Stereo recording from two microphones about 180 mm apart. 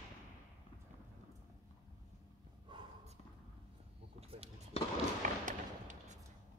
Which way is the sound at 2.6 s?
25° right (ahead or behind).